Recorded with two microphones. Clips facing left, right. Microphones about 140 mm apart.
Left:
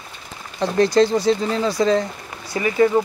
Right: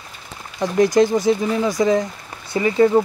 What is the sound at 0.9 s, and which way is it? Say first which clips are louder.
Speech: right 1 dB; 15° right (ahead or behind).